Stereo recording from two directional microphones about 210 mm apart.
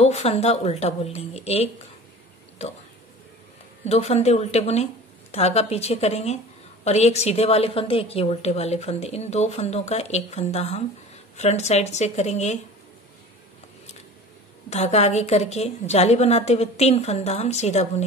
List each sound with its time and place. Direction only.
0.0 s a woman's voice: 30° left (ahead or behind)
3.8 s a woman's voice: 30° left (ahead or behind)
14.7 s a woman's voice: 30° left (ahead or behind)